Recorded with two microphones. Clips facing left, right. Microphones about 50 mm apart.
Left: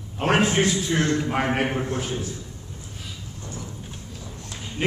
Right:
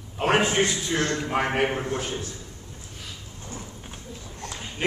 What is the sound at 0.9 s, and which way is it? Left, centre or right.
Speech, centre.